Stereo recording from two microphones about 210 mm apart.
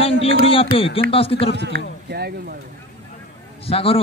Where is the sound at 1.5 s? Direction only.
50° right (ahead or behind).